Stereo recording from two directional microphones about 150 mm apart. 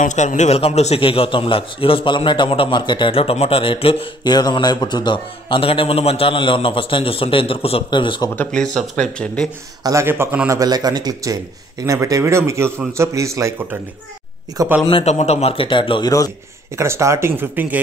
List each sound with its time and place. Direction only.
0.0 s a man's voice: 55° left (ahead or behind); by 8.3 s 30° left (ahead or behind)
8.4 s speech: 5° left (ahead or behind)
9.8 s speech: 15° right (ahead or behind)
10.5 s speech: 25° right (ahead or behind)
14.9 s a man's voice: 40° left (ahead or behind)
16.7 s speech: 20° right (ahead or behind)